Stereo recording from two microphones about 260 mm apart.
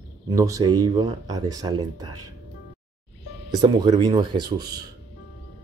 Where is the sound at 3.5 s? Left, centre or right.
Centre.